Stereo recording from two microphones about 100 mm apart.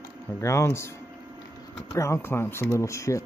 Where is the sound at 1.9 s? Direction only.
30° left (ahead or behind).